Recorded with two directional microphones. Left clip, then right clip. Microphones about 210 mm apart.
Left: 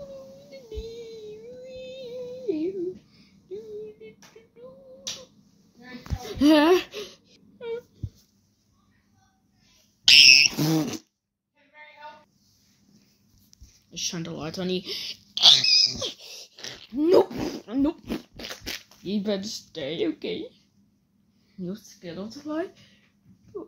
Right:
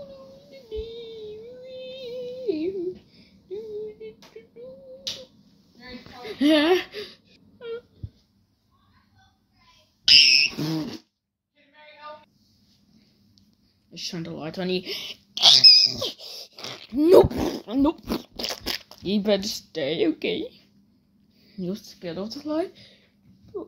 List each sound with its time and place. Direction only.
0.5 s child singing: 20° left (ahead or behind)
1.6 s female singing: 5° left (ahead or behind)
6.2 s whimper: 15° left (ahead or behind)
10.0 s a sound: 35° left (ahead or behind)
13.8 s a sound: 5° left (ahead or behind)
14.5 s a sound: 15° right (ahead or behind)
17.6 s speech: 15° right (ahead or behind)
18.3 s crunch: 35° right (ahead or behind)
19.0 s speech: 25° right (ahead or behind)
21.5 s speech: 25° right (ahead or behind)